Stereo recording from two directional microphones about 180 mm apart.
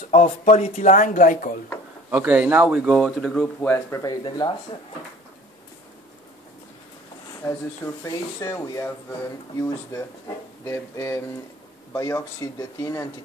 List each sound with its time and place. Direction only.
0.1 s speech: 40° left (ahead or behind)
2.0 s speech: 10° right (ahead or behind); by 4.5 s 20° left (ahead or behind)
7.4 s speech: 15° left (ahead or behind)